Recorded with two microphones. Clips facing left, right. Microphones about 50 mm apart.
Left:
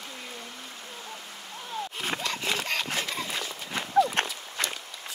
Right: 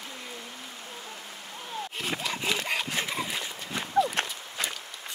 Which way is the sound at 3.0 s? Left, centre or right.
Centre.